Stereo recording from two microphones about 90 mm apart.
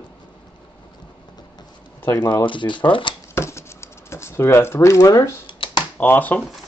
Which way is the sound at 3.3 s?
30° left (ahead or behind).